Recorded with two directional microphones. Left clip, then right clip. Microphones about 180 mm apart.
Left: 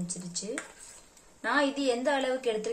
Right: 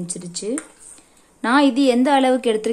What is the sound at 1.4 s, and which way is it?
A woman's voice, 60° right (ahead or behind).